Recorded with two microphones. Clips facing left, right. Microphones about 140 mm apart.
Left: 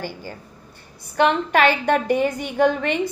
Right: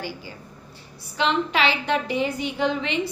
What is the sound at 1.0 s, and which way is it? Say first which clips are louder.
A woman's voice: left 4 dB; 50° left (ahead or behind).